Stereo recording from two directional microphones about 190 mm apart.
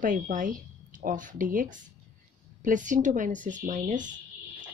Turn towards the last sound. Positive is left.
turn(degrees=-40)  # may be behind; listen again after turning